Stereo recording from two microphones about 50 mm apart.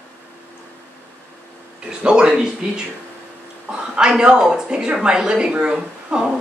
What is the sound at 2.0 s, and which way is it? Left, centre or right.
Speech, centre.